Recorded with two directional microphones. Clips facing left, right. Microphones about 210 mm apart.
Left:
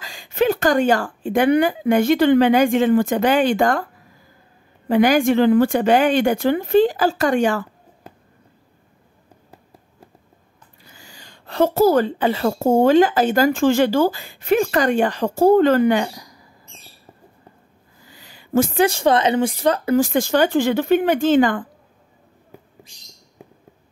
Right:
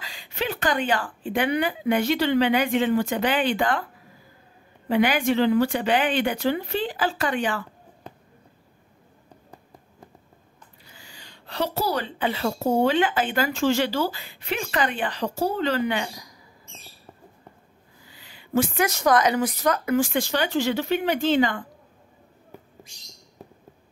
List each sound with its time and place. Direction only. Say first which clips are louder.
0.0 s a woman's voice: left 11 dB; 45° left (ahead or behind)
4.8 s a woman's voice: left 6 dB; 45° left (ahead or behind)
11.0 s a woman's voice: left 3 dB; 45° left (ahead or behind)
18.1 s a sound: left 5 dB; 45° left (ahead or behind)
18.8 s a woman's voice: left 4 dB; 30° left (ahead or behind); by 21.6 s 50° left (ahead or behind)